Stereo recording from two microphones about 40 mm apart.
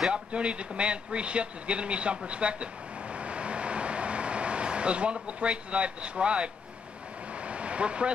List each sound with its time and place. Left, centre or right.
0.1 s speech: right
7.3 s vehicle: right